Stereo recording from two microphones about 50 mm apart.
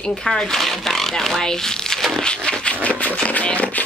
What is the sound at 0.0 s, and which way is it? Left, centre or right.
Speech, centre.